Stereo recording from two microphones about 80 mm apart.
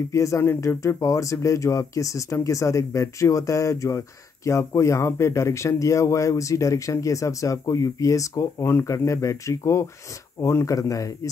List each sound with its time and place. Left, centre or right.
0.1 s speech: left